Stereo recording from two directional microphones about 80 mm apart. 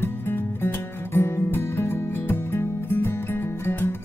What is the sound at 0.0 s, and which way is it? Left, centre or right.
Music, left.